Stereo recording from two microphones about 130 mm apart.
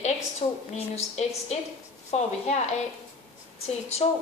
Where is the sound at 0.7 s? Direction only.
55° left (ahead or behind).